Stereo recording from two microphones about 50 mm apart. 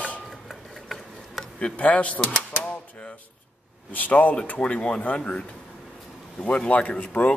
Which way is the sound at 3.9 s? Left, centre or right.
Left.